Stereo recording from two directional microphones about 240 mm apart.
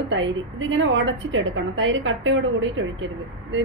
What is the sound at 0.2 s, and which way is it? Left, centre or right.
A woman's voice, right.